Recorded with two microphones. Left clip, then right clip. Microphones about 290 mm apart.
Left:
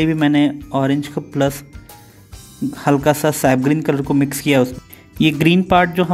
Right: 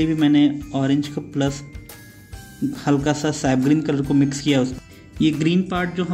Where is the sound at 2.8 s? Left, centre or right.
Left.